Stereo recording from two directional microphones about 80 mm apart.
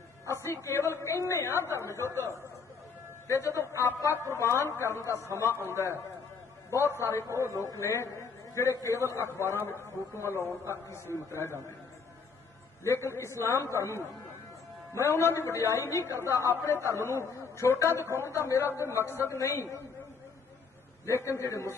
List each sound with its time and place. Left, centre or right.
0.7 s speech: left
3.3 s speech: left
7.2 s a man's voice: right
7.7 s a man's voice: left
10.4 s a man's voice: right
10.7 s speech: left
12.8 s speech: left
21.0 s speech: left